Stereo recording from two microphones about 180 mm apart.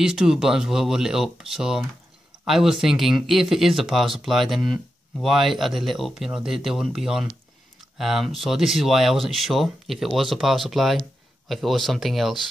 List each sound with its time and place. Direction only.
0.0 s speech: 5° right (ahead or behind)